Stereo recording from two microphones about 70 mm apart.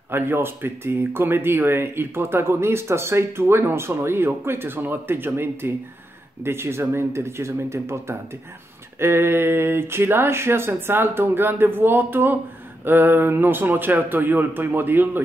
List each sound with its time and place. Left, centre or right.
0.1 s speech: right